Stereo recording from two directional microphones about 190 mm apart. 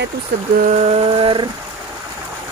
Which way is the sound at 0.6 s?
30° right (ahead or behind).